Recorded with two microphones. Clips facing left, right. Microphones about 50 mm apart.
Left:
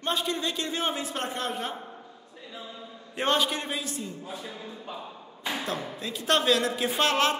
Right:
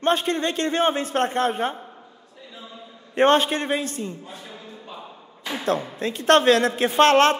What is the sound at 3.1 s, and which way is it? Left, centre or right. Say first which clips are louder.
A man's voice: right 8 dB; right.